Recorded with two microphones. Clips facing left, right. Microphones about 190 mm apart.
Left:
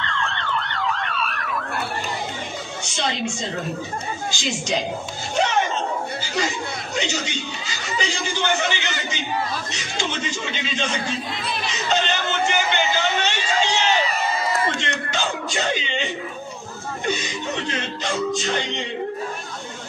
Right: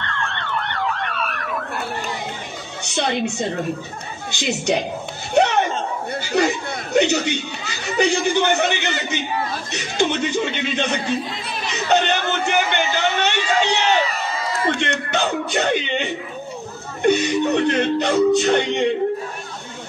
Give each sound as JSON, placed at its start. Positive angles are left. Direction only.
{"t": 0.3, "sound": "emergency vehicle", "side_deg": -60}
{"t": 2.8, "sound": "speech", "side_deg": -60}
{"t": 5.3, "sound": "a sound", "side_deg": -60}
{"t": 6.3, "sound": "speech", "side_deg": -60}
{"t": 11.7, "sound": "a sound", "side_deg": -60}
{"t": 17.0, "sound": "speech", "side_deg": -65}